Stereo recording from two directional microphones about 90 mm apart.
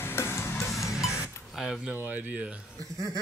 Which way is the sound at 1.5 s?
5° right (ahead or behind).